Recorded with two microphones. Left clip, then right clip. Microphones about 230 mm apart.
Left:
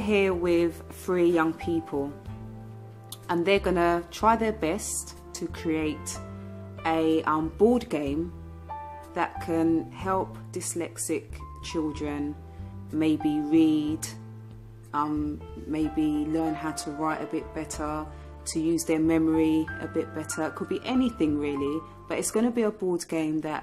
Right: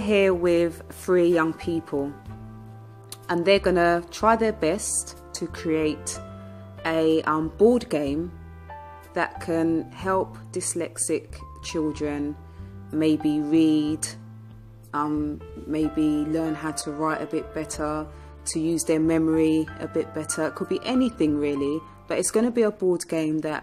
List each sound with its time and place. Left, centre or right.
0.0 s speech: centre
3.3 s speech: centre